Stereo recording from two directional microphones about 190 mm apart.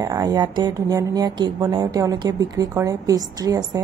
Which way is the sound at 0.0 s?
20° right (ahead or behind).